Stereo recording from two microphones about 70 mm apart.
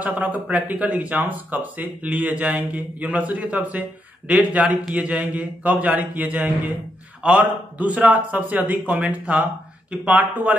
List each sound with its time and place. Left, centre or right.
0.0 s a man's voice: right